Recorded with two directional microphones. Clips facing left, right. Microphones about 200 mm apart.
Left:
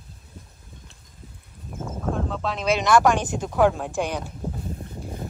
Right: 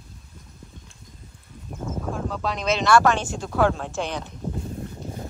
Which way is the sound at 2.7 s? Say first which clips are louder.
Even; 15° left (ahead or behind).